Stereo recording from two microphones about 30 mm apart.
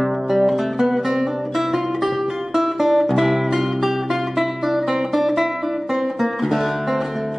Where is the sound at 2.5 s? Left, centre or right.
Centre.